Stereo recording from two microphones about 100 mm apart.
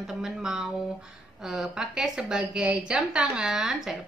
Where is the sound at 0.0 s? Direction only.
5° right (ahead or behind).